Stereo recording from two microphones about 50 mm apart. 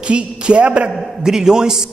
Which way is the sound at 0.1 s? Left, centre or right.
Right.